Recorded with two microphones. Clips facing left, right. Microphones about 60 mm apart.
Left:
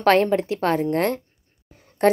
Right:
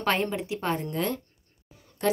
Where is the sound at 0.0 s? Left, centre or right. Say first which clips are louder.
Left 10 dB; left.